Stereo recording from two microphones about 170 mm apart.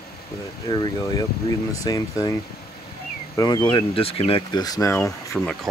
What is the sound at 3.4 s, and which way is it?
Speech, 25° left (ahead or behind).